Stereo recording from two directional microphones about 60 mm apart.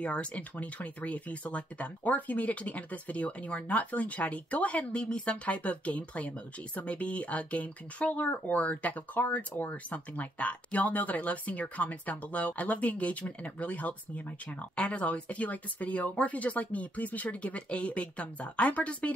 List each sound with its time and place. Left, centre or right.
0.0 s speech: left